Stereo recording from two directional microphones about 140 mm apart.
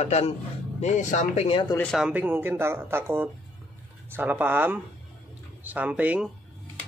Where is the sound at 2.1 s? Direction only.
15° right (ahead or behind).